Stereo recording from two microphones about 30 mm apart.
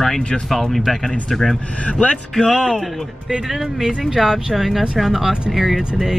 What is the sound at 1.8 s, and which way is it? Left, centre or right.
Speech, left.